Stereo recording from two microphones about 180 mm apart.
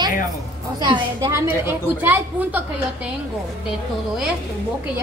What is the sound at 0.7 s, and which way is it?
Speech, 25° right (ahead or behind).